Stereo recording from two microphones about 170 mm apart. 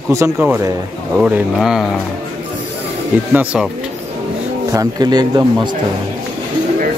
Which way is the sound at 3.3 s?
5° right (ahead or behind).